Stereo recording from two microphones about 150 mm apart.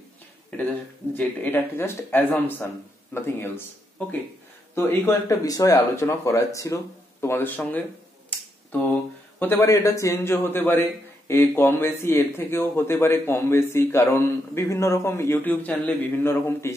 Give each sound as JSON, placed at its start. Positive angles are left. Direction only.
{"t": 0.5, "sound": "speech", "side_deg": 10}
{"t": 9.4, "sound": "speech", "side_deg": 15}